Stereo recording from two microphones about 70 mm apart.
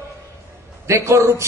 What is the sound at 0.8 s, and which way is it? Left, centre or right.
Speech, right.